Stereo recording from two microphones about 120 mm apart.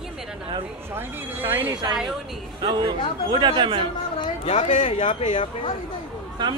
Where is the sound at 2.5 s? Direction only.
40° right (ahead or behind).